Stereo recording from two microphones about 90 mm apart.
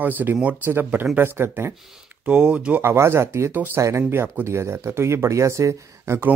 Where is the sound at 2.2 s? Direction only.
15° right (ahead or behind).